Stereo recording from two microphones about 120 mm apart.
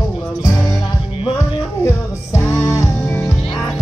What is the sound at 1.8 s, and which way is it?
Music, 20° left (ahead or behind).